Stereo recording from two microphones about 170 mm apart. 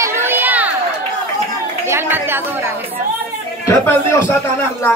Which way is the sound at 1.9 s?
15° right (ahead or behind).